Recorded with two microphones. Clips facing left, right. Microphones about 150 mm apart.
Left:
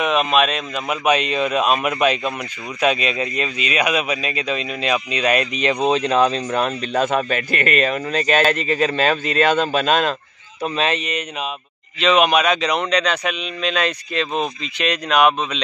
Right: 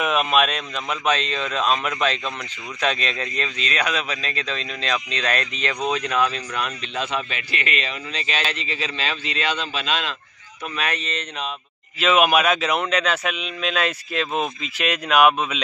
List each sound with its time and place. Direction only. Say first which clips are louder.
0.0 s a man's voice: left 3 dB; centre (ahead or behind); by 10.1 s 45° left (ahead or behind)
10.6 s speech: left 6 dB; 25° left (ahead or behind)
12.0 s a man's voice: left 2 dB; 5° right (ahead or behind)